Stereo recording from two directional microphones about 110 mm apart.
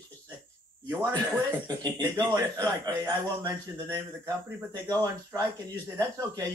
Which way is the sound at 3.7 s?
25° right (ahead or behind).